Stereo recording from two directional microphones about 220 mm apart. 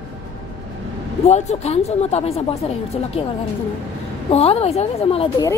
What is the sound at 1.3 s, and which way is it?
Speech, 30° left (ahead or behind).